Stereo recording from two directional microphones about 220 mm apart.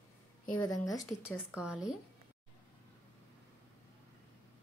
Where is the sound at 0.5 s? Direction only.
15° left (ahead or behind).